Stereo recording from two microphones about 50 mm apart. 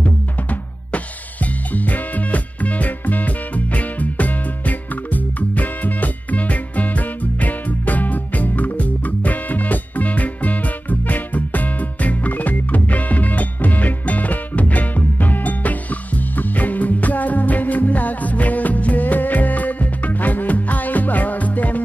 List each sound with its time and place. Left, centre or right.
0.0 s drum kit: left